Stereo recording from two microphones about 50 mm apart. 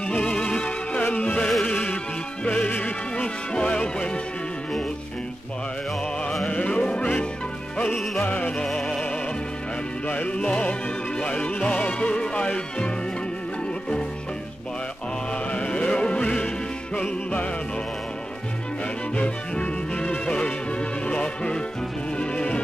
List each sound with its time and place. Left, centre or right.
0.2 s music: centre
1.0 s music: left
6.6 s music: left
7.9 s music: centre
8.2 s music: left
10.0 s music: left
15.5 s music: centre
19.1 s music: left